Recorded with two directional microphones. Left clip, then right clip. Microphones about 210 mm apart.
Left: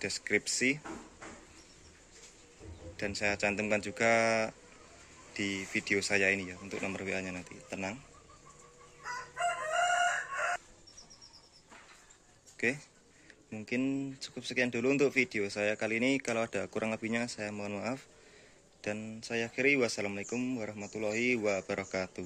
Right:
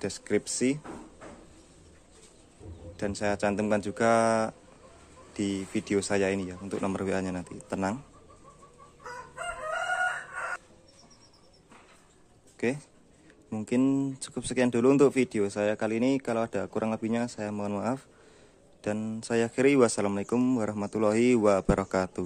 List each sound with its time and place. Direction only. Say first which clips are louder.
0.0 s speech: right 2 dB; 15° right (ahead or behind)
3.0 s speech: right 3 dB; 15° right (ahead or behind)
12.5 s a sound: right 2 dB; 15° right (ahead or behind)
13.5 s speech: right 7 dB; 15° right (ahead or behind)